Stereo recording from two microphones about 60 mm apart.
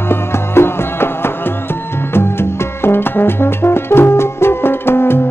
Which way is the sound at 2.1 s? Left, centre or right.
Left.